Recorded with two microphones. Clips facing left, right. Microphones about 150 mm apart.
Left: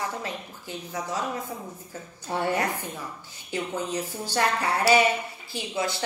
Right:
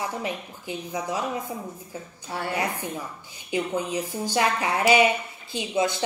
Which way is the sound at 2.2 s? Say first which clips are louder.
Left 5 dB; 20° left (ahead or behind).